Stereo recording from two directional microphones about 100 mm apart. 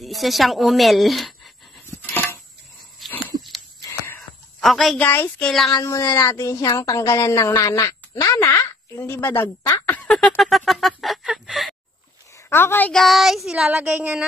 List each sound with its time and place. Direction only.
0.0 s a woman's voice: centre (ahead or behind)
1.9 s a sound: 20° left (ahead or behind)
3.0 s dog: centre (ahead or behind)
3.8 s a sound: 30° left (ahead or behind)
4.6 s a woman's voice: centre (ahead or behind)
4.9 s speech: 20° left (ahead or behind)
5.4 s a woman's voice: 5° left (ahead or behind)
5.7 s speech: 35° left (ahead or behind)
9.7 s a sound: 15° left (ahead or behind)
10.1 s fowl: centre (ahead or behind)
12.4 s a woman's voice: 25° left (ahead or behind)
12.9 s child singing: centre (ahead or behind)